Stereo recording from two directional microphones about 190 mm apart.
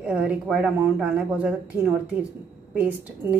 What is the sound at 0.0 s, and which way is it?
Speech, 5° right (ahead or behind).